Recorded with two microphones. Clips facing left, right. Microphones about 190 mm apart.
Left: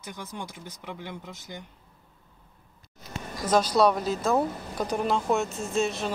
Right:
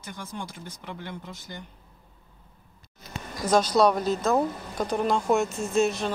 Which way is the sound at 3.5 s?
5° left (ahead or behind).